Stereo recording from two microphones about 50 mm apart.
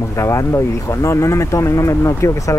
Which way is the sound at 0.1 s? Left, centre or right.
Left.